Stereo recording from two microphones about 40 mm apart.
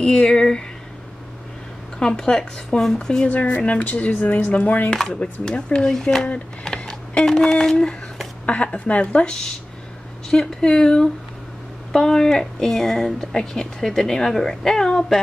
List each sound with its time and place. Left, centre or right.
0.0 s speech: centre
2.0 s speech: centre
3.3 s speech: left
4.9 s speech: centre
5.2 s speech: left
6.6 s a sound: centre
7.2 s speech: centre
8.5 s speech: left
10.3 s speech: centre